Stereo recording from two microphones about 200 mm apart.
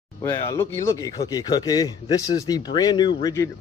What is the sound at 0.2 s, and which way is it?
Speech, 15° left (ahead or behind).